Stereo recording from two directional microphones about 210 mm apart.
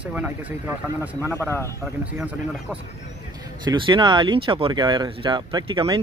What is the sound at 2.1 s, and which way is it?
Speech, 5° right (ahead or behind).